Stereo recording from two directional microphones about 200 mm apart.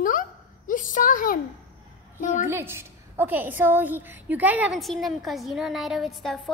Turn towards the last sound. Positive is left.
turn(degrees=0)  # may be behind; listen again after turning